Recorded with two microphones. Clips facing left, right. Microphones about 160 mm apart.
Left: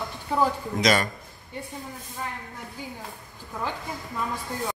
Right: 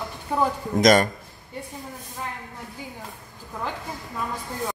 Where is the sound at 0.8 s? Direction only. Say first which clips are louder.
Right 6 dB; 45° right (ahead or behind).